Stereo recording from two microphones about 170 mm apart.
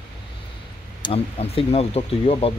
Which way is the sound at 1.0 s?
35° left (ahead or behind).